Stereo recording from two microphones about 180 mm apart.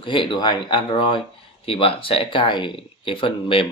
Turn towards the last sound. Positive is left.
turn(degrees=30)  # may be behind; listen again after turning